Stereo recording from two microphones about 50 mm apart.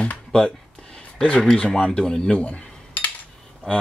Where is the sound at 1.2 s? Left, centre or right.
Left.